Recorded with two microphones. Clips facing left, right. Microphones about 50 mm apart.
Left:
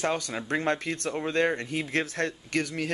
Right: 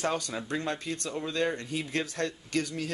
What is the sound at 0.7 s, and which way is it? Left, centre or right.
Speech, left.